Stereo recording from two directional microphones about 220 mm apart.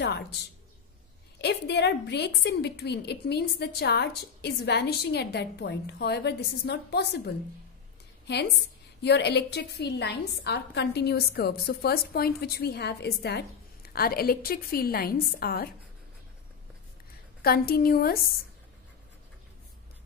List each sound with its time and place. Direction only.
1.4 s a woman's voice: 50° left (ahead or behind)
9.0 s a woman's voice: 50° left (ahead or behind)
17.4 s a woman's voice: 45° left (ahead or behind)